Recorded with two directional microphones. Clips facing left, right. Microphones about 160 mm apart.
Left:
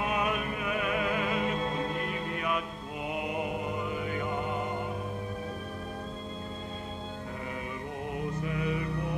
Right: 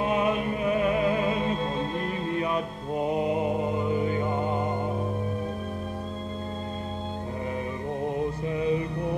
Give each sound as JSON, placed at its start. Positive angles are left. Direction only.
{"t": 0.0, "sound": "music", "side_deg": -25}
{"t": 8.5, "sound": "music", "side_deg": -30}